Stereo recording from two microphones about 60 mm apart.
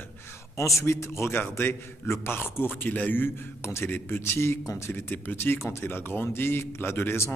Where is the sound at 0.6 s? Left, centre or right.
Left.